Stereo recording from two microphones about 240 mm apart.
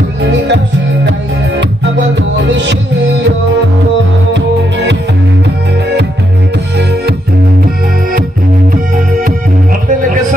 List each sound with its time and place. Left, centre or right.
0.2 s music: right
2.3 s music: right